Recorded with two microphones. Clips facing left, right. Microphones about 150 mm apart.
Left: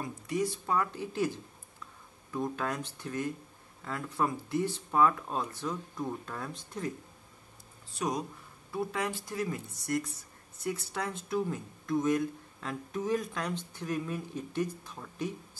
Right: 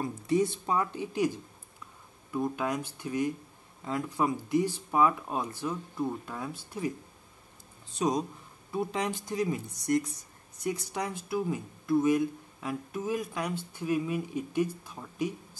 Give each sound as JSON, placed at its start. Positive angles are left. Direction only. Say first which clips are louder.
{"t": 0.0, "sound": "speech", "louder": "right 5 dB", "side_deg": -25}
{"t": 2.3, "sound": "speech", "louder": "right 3 dB", "side_deg": -10}
{"t": 7.9, "sound": "speech", "louder": "right 5 dB", "side_deg": -20}